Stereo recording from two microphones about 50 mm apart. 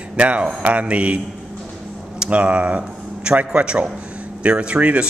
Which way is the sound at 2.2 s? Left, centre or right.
Right.